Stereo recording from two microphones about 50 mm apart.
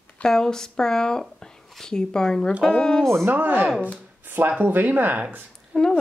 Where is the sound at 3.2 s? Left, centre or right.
Right.